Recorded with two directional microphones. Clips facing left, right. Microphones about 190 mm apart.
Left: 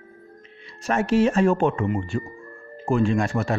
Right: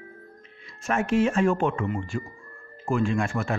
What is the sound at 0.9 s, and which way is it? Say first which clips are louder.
Speech: left 3 dB; 35° left (ahead or behind).